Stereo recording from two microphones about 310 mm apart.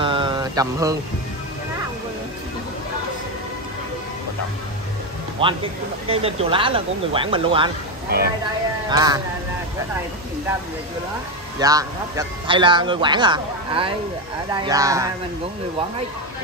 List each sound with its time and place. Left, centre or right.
0.0 s a sound: centre
5.4 s a man's voice: centre
8.9 s a man's voice: centre
11.6 s a man's voice: centre